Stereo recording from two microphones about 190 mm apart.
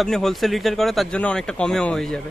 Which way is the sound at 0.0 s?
Centre (ahead or behind).